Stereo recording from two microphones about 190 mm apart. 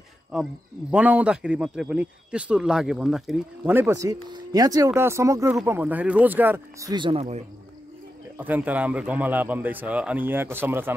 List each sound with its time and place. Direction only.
0.3 s speech: 5° right (ahead or behind); by 7.4 s 35° right (ahead or behind)
8.4 s speech: 10° right (ahead or behind)